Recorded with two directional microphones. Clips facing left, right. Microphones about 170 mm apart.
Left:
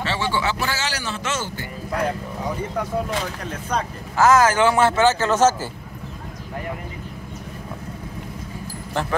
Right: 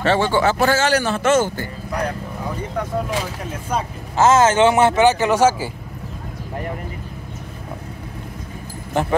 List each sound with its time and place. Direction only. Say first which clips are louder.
0.0 s speech: right 7 dB; 50° right (ahead or behind)
3.1 s speech: right 2 dB; 10° right (ahead or behind)
4.2 s a man's voice: right 2 dB; 25° right (ahead or behind)